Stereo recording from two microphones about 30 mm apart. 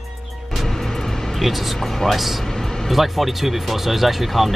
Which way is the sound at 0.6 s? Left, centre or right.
Centre.